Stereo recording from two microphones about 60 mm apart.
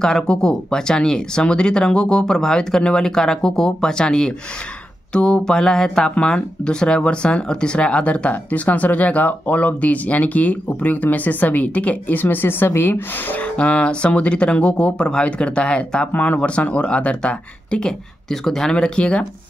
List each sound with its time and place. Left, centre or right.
0.0 s speech: centre; by 13.4 s left
13.4 s speech: left